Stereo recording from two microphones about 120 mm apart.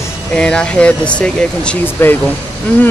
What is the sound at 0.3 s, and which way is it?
Speech, 10° left (ahead or behind).